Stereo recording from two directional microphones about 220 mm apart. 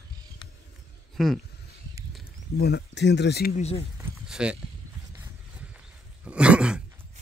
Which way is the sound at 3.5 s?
30° left (ahead or behind).